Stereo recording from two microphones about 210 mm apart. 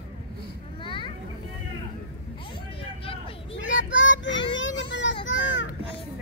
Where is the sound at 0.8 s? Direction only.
25° left (ahead or behind).